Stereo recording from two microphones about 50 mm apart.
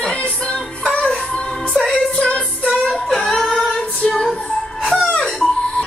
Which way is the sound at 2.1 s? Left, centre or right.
Left.